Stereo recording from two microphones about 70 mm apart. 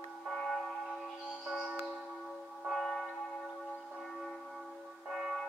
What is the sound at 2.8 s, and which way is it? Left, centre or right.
Church bell, centre.